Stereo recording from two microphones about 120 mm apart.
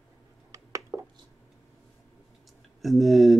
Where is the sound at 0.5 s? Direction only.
25° right (ahead or behind).